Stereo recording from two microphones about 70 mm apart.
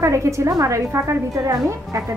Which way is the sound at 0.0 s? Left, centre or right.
Right.